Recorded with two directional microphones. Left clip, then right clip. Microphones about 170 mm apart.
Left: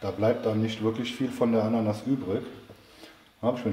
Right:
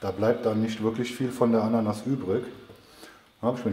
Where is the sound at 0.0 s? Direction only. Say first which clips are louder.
Right 1 dB; 35° right (ahead or behind).